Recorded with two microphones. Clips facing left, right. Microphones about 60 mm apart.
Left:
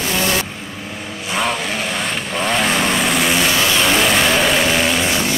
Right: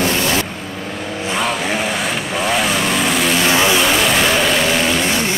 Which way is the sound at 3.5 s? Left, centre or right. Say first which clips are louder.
Right 3 dB; centre.